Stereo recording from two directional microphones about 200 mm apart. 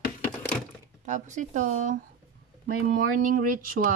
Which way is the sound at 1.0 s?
40° right (ahead or behind).